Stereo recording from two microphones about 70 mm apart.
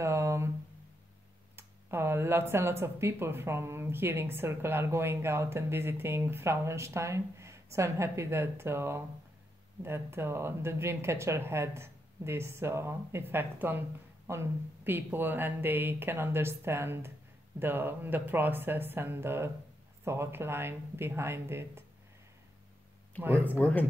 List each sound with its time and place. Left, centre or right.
0.0 s a sound: right
1.6 s speech: right
23.2 s speech: right
23.6 s speech: left